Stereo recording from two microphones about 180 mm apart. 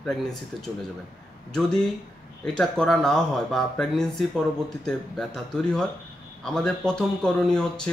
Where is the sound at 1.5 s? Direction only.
5° left (ahead or behind).